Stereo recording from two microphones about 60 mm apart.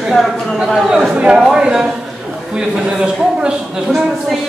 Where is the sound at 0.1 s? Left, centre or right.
Centre.